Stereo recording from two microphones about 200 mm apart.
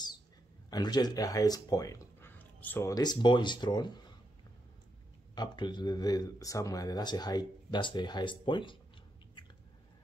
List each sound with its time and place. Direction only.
0.7 s speech: 20° left (ahead or behind)
5.3 s speech: 20° left (ahead or behind)